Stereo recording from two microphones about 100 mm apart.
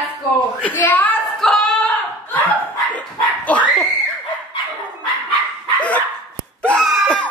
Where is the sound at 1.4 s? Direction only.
5° left (ahead or behind).